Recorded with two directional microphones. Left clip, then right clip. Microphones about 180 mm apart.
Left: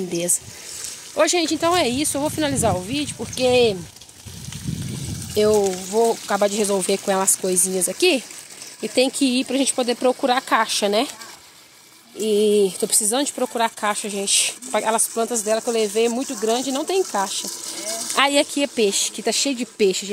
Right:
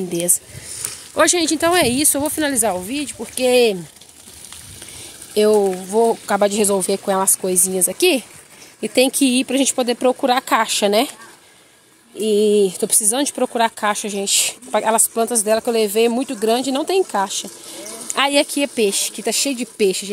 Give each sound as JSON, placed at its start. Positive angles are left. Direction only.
{"t": 0.1, "sound": "speech", "side_deg": -15}
{"t": 1.1, "sound": "speech", "side_deg": -30}
{"t": 5.3, "sound": "speech", "side_deg": -20}
{"t": 6.8, "sound": "speech", "side_deg": -10}
{"t": 12.2, "sound": "speech", "side_deg": -20}